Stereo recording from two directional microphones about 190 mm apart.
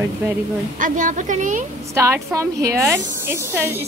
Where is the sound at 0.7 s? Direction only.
45° right (ahead or behind).